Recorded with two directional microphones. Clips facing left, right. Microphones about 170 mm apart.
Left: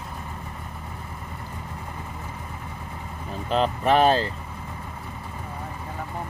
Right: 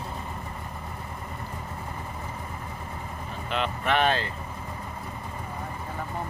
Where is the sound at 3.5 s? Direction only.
35° left (ahead or behind).